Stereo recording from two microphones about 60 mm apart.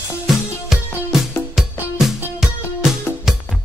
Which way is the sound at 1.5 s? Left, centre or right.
Centre.